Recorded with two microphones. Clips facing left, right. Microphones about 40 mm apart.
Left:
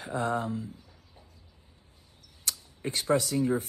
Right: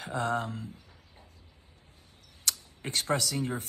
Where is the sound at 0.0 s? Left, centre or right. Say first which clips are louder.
Left 1 dB; right.